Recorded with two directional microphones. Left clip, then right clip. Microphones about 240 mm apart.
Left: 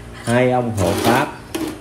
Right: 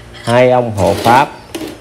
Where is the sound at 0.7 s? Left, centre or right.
Centre.